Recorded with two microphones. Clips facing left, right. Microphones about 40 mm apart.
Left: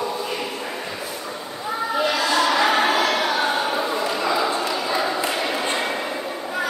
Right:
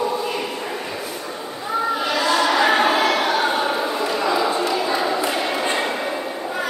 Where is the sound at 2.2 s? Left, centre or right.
Centre.